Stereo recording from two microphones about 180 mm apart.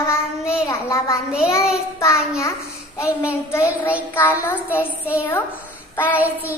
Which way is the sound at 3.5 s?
15° left (ahead or behind).